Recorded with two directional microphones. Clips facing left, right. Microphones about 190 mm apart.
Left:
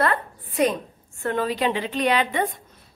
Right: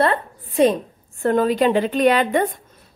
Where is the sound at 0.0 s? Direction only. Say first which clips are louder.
Right 4 dB; 30° right (ahead or behind).